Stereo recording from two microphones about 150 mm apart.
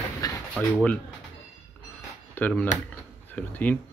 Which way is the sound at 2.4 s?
15° left (ahead or behind).